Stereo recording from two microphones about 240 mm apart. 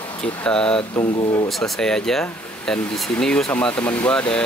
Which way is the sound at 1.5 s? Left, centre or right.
Centre.